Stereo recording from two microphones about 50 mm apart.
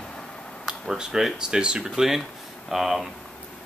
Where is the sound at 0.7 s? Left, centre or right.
Centre.